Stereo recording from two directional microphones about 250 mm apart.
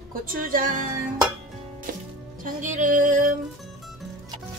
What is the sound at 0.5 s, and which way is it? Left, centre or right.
Speech, right.